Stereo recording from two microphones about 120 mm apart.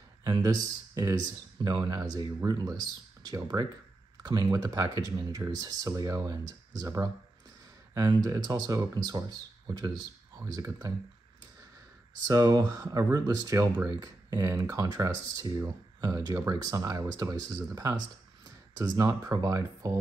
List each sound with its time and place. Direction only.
0.2 s speech: 30° right (ahead or behind)
12.3 s speech: 30° right (ahead or behind)